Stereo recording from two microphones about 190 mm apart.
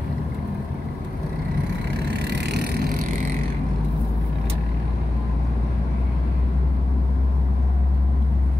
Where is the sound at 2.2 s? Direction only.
60° right (ahead or behind).